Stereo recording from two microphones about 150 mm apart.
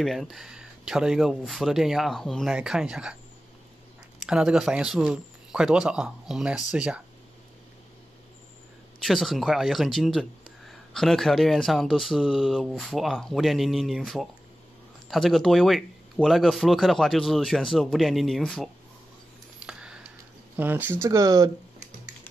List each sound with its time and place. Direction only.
0.0 s speech: centre (ahead or behind)
4.2 s speech: 5° right (ahead or behind)
9.0 s speech: centre (ahead or behind)
19.6 s computer keyboard: 5° right (ahead or behind)
20.5 s speech: 10° right (ahead or behind)